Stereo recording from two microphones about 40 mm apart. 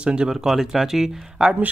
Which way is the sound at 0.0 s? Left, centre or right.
Right.